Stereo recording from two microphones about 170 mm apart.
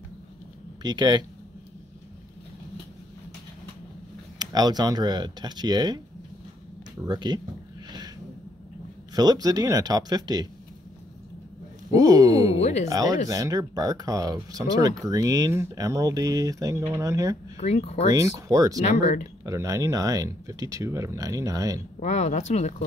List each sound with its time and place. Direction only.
0.8 s speech: 25° right (ahead or behind)
4.4 s speech: 25° right (ahead or behind)
7.1 s speech: 25° right (ahead or behind)
9.1 s speech: 25° right (ahead or behind)
11.9 s speech: 20° right (ahead or behind)
12.5 s speech: 40° left (ahead or behind)
12.8 s speech: 20° right (ahead or behind)
17.6 s speech: 40° left (ahead or behind)
18.1 s speech: 20° right (ahead or behind)
22.0 s speech: 40° left (ahead or behind)